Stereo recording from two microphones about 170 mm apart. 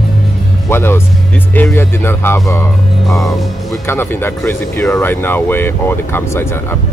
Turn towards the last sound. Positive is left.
turn(degrees=15)  # may be behind; listen again after turning